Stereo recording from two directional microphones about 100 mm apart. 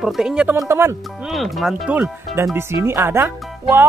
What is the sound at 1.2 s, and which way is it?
Speech, centre (ahead or behind).